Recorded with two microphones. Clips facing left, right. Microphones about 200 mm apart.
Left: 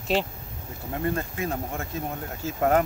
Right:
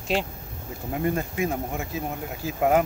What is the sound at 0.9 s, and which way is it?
Speech, 15° right (ahead or behind).